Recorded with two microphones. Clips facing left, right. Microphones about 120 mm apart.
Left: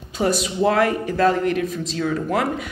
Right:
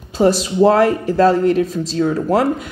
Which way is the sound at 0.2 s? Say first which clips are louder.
Right 7 dB; 30° right (ahead or behind).